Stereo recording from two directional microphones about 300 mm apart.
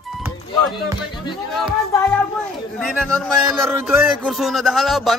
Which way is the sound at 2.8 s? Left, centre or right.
Centre.